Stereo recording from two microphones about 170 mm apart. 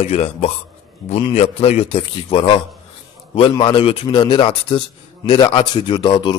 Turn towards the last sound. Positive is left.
turn(degrees=25)  # may be behind; listen again after turning